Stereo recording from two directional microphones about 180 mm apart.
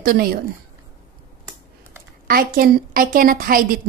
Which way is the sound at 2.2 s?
55° right (ahead or behind).